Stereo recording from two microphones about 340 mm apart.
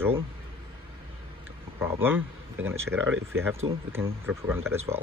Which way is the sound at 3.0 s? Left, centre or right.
Right.